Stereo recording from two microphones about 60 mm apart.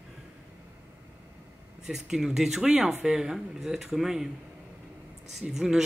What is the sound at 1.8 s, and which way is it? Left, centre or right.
Speech, centre.